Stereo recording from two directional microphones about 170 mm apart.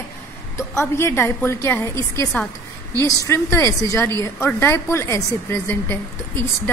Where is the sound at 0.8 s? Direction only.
15° left (ahead or behind).